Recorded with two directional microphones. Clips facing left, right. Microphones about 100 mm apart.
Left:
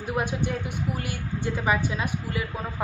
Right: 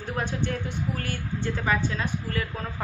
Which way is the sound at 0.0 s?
15° left (ahead or behind).